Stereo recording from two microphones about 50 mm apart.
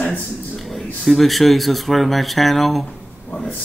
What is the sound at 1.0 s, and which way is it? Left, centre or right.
Speech, centre.